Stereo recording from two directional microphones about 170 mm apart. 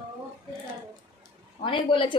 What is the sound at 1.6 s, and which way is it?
Speech, 30° left (ahead or behind).